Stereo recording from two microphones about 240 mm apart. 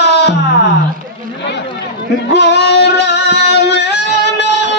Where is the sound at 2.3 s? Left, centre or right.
Left.